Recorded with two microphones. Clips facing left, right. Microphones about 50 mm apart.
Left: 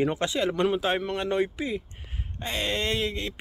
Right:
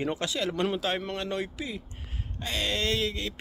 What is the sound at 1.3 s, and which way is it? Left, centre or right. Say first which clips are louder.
Mantra: left 6 dB; left.